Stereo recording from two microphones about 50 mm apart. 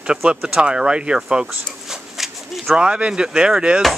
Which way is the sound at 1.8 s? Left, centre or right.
Centre.